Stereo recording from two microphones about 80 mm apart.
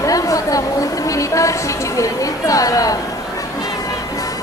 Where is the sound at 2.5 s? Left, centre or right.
Left.